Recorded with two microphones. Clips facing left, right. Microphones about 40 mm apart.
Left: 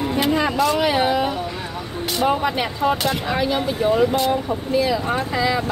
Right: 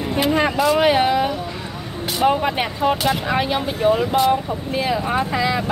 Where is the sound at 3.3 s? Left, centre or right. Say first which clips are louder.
Right 1 dB; right.